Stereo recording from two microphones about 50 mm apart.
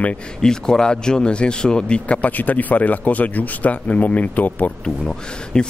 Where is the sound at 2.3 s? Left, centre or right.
Left.